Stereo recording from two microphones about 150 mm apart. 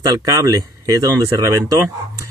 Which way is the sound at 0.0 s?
25° right (ahead or behind).